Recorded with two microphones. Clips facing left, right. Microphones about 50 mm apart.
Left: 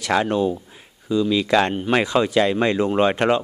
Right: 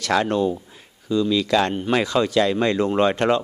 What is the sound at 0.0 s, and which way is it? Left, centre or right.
A man's voice, centre.